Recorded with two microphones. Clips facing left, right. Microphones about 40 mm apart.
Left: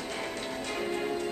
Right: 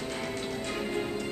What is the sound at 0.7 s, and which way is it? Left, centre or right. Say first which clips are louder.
Music: left 2 dB; centre.